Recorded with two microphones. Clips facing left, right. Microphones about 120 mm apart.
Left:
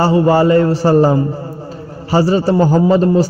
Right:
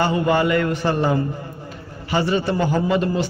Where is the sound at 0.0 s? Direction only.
35° left (ahead or behind).